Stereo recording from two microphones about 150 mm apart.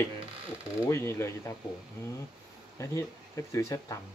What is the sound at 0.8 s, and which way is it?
Speech, 20° left (ahead or behind).